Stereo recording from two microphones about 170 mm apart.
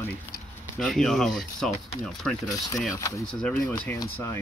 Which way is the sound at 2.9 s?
20° left (ahead or behind).